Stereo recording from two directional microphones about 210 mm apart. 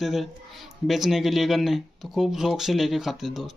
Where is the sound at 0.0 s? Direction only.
Centre (ahead or behind).